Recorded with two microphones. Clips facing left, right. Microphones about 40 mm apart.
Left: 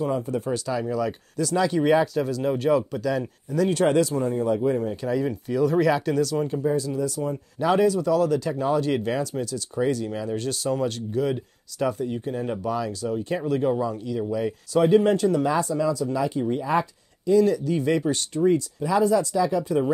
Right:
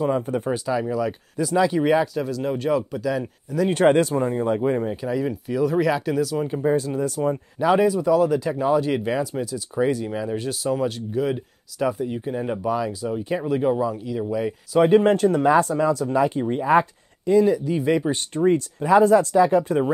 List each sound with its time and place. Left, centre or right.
0.0 s speech: right
0.5 s speech: centre
3.7 s speech: right
5.0 s speech: centre
6.6 s speech: right
7.5 s speech: centre
14.8 s speech: right
16.2 s speech: right
17.6 s speech: centre
18.3 s speech: right